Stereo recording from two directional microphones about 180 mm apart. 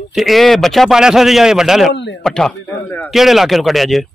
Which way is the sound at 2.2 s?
5° left (ahead or behind).